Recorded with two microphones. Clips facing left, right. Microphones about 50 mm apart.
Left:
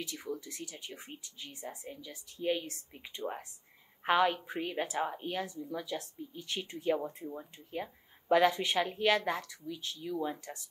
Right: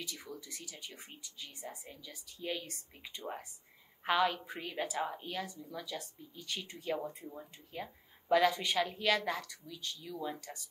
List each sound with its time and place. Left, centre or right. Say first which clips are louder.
0.1 s speech: left 6 dB; centre
1.9 s a woman's voice: left 5 dB; centre